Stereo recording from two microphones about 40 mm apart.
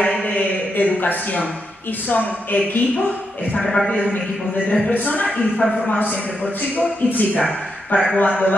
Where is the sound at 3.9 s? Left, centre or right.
Left.